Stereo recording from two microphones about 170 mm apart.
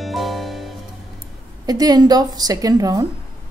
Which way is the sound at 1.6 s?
20° right (ahead or behind).